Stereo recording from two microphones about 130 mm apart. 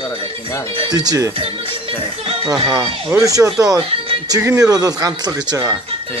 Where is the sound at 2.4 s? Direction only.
25° right (ahead or behind).